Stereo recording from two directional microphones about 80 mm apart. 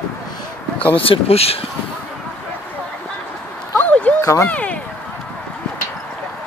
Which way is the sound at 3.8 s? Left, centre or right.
Centre.